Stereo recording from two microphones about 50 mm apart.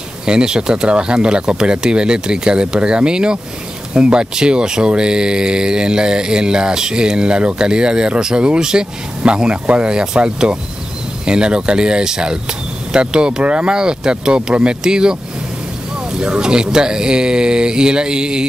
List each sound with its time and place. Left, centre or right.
0.2 s speech: centre